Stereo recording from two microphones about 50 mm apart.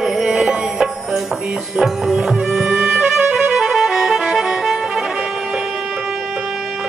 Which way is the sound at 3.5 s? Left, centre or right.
Centre.